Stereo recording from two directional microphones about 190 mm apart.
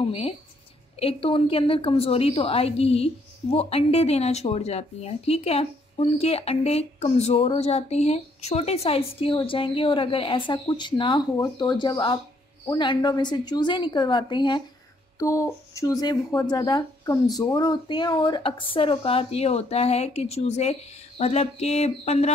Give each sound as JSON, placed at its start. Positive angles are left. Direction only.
{"t": 0.9, "sound": "speech", "side_deg": 30}